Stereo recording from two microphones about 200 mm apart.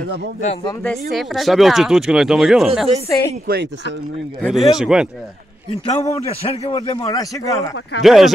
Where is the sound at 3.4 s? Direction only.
55° right (ahead or behind).